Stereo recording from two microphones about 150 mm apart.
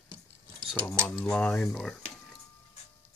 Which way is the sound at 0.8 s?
15° left (ahead or behind).